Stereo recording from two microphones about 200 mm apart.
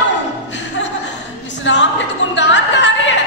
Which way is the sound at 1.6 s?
65° left (ahead or behind).